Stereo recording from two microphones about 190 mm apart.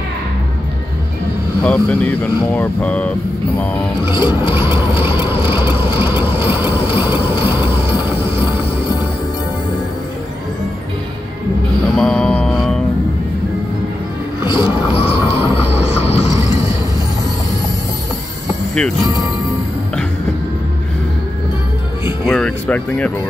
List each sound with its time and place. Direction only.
1.6 s speech: 5° left (ahead or behind)
4.1 s music: 25° left (ahead or behind)
4.5 s mechanisms: 10° right (ahead or behind)
5.3 s a sound: 10° right (ahead or behind)
11.9 s music: centre (ahead or behind)
14.4 s a sound: 25° left (ahead or behind)
15.5 s music: 35° left (ahead or behind)
22.2 s speech: 5° left (ahead or behind)